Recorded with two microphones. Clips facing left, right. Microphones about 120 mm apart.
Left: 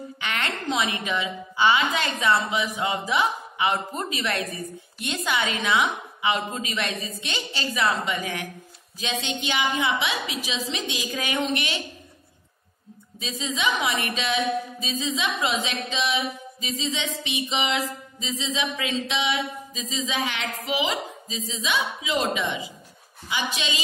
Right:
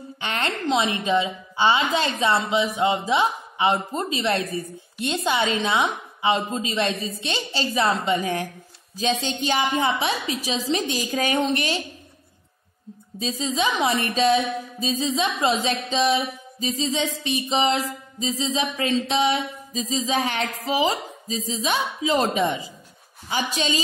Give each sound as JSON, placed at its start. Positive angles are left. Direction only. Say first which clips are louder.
{"t": 0.2, "sound": "a woman's voice", "louder": "right 4 dB", "side_deg": -30}
{"t": 13.2, "sound": "a woman's voice", "louder": "right 3 dB", "side_deg": -35}